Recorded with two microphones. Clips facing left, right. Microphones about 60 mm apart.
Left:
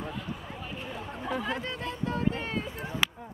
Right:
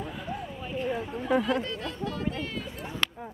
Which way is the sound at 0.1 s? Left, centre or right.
Centre.